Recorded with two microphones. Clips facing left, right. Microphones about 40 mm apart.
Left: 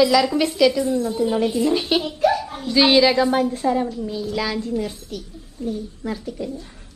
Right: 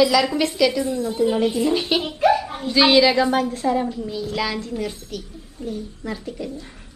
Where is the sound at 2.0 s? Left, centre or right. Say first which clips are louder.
Right 1 dB; right.